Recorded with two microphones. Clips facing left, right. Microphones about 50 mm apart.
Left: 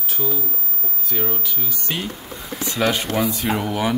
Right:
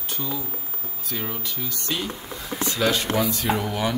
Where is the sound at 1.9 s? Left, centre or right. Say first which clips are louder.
Left 1 dB; left.